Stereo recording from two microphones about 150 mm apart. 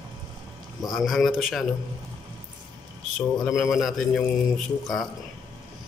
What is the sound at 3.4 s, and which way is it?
Speech, centre (ahead or behind).